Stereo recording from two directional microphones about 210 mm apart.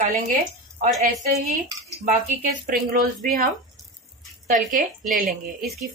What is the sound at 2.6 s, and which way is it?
A woman's voice, 40° right (ahead or behind).